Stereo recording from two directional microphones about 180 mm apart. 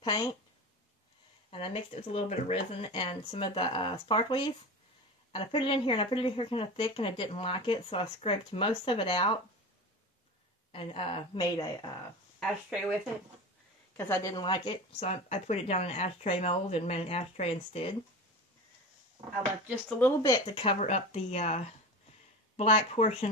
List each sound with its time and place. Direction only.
0.0 s a woman's voice: 25° left (ahead or behind)
1.5 s speech: 30° left (ahead or behind)
10.7 s speech: 30° left (ahead or behind)
13.9 s a woman's voice: 15° left (ahead or behind)
14.3 s speech: 25° left (ahead or behind)
19.9 s a woman's voice: 10° left (ahead or behind)
20.2 s speech: 20° left (ahead or behind); by 23.3 s 35° left (ahead or behind)